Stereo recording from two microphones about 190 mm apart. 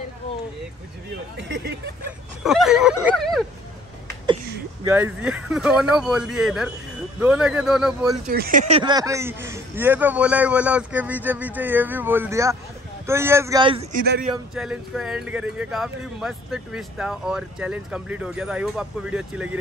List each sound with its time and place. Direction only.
1.3 s speech: 60° right (ahead or behind)
2.4 s speech: centre (ahead or behind)
4.8 s speech: 10° right (ahead or behind)
8.3 s speech: 50° right (ahead or behind)
8.6 s a man's voice: 25° right (ahead or behind)
13.6 s speech: 25° right (ahead or behind)
13.9 s speech: 60° right (ahead or behind)
14.5 s speech: centre (ahead or behind)